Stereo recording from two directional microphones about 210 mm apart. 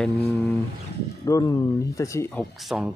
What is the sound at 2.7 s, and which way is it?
Speech, 5° right (ahead or behind).